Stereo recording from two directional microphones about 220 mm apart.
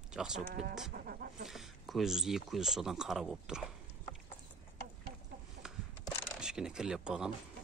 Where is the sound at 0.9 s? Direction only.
40° right (ahead or behind).